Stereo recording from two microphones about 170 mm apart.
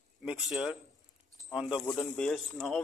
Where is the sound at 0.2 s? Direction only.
5° right (ahead or behind).